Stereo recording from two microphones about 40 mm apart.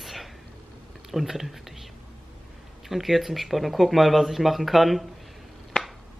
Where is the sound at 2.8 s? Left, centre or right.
Centre.